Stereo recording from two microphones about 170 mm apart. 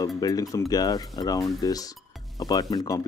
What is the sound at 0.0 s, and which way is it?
Speech, 20° left (ahead or behind).